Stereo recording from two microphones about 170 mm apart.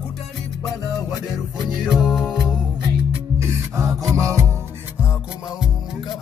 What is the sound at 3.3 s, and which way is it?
Music, 15° right (ahead or behind).